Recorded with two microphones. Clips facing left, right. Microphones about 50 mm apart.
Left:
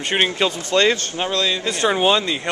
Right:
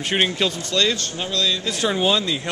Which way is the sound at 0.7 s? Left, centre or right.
Left.